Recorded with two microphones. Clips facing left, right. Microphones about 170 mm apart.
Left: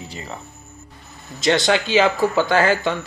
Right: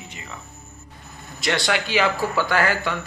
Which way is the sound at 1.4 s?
25° left (ahead or behind).